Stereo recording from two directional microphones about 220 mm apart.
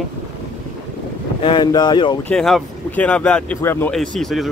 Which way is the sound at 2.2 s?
Centre (ahead or behind).